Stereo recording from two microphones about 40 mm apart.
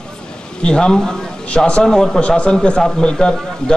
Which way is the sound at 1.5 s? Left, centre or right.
Left.